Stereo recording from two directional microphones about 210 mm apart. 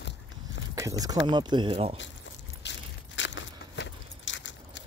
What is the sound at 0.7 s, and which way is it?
Speech, 15° right (ahead or behind).